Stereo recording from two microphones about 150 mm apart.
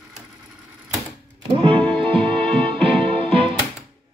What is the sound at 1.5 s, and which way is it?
Music, 35° right (ahead or behind).